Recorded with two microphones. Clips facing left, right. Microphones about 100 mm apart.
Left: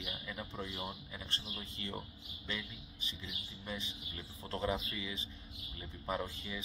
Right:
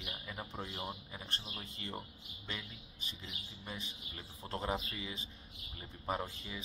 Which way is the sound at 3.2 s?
35° right (ahead or behind).